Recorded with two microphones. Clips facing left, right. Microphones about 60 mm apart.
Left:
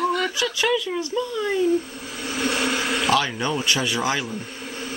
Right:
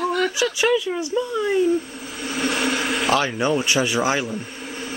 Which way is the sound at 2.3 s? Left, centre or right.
Centre.